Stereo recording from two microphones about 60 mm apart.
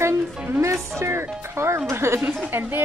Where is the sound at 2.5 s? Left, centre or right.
Right.